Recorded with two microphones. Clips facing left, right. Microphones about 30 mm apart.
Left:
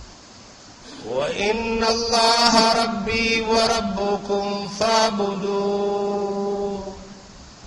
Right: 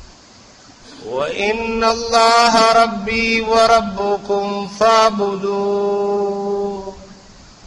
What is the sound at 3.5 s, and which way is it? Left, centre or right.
Mantra, right.